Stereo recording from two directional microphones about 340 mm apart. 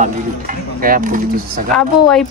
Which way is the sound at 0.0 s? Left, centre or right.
Right.